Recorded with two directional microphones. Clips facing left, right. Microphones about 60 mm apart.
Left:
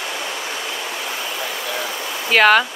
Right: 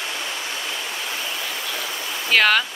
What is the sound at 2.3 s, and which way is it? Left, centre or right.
Speech, centre.